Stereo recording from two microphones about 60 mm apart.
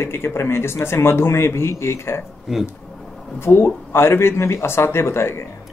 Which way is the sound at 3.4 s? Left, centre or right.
Left.